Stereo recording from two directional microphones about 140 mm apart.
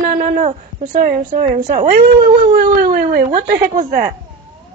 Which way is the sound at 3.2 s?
65° right (ahead or behind).